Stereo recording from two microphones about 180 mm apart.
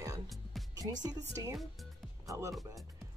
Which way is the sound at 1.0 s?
20° right (ahead or behind).